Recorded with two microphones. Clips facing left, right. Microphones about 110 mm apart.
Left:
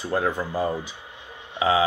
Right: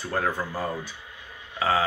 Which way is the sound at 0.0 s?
15° left (ahead or behind).